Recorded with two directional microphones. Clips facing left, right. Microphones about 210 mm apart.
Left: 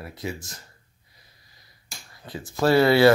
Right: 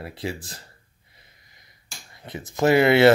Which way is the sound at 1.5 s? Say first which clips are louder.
Left 1 dB; 20° right (ahead or behind).